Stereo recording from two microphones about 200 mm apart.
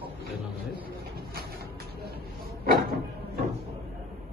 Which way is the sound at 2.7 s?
50° right (ahead or behind).